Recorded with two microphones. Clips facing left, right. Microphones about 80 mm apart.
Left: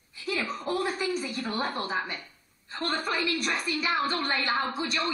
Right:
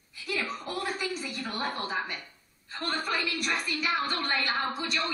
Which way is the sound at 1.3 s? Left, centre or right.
Left.